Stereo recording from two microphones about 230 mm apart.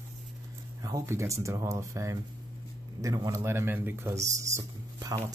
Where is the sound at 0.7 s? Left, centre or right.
Centre.